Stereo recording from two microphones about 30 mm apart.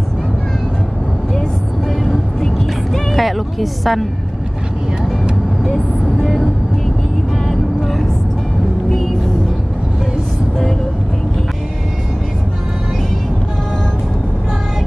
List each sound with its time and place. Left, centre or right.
2.0 s vehicle: centre
3.1 s music: centre
6.2 s vehicle: centre